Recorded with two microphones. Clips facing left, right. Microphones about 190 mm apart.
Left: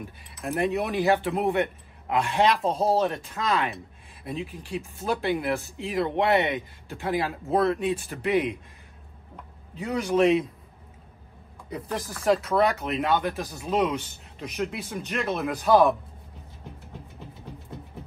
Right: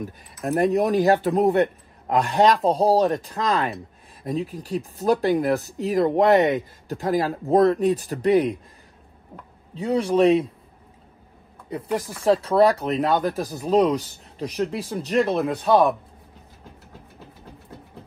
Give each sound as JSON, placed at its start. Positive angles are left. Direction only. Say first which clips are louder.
{"t": 0.0, "sound": "speech", "louder": "right 6 dB", "side_deg": -40}
{"t": 9.8, "sound": "speech", "louder": "right 4 dB", "side_deg": -30}
{"t": 12.2, "sound": "speech", "louder": "right 4 dB", "side_deg": -30}